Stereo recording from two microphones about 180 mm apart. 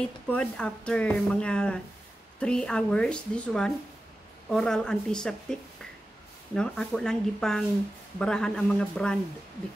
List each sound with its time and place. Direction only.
0.3 s a woman's voice: 5° left (ahead or behind)